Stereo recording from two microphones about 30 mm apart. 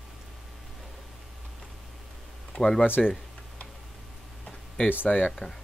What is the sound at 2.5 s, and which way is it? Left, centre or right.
Speech, centre.